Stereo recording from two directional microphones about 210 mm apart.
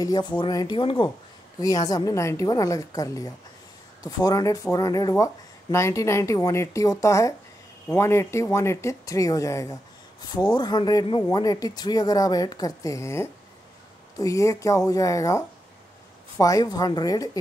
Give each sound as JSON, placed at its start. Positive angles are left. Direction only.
{"t": 0.0, "sound": "speech", "side_deg": 20}